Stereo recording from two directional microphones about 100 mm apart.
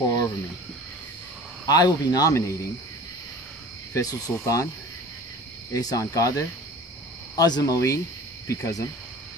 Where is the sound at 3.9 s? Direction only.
35° left (ahead or behind).